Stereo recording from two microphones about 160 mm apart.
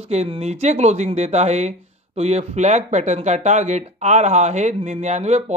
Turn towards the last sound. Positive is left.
turn(degrees=-45)  # may be behind; listen again after turning